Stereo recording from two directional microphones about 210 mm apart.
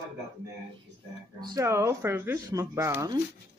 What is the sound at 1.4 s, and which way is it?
Speech, 15° right (ahead or behind).